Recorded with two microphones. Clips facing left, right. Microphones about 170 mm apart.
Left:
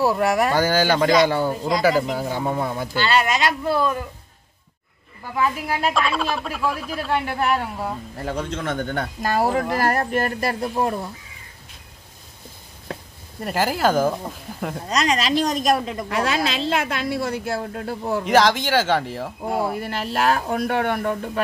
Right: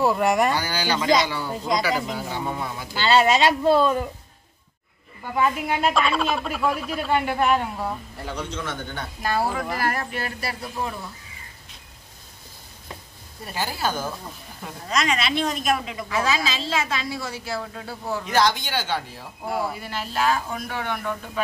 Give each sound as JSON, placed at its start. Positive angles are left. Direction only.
{"t": 0.0, "sound": "a woman's voice", "side_deg": 5}
{"t": 0.5, "sound": "speech", "side_deg": 50}
{"t": 3.0, "sound": "speech", "side_deg": -25}
{"t": 5.3, "sound": "a woman's voice", "side_deg": 0}
{"t": 8.3, "sound": "speech", "side_deg": 50}
{"t": 9.2, "sound": "speech", "side_deg": 45}
{"t": 13.4, "sound": "speech", "side_deg": 85}
{"t": 14.9, "sound": "a woman's voice", "side_deg": 35}
{"t": 16.1, "sound": "a woman's voice", "side_deg": 65}
{"t": 19.4, "sound": "a woman's voice", "side_deg": 45}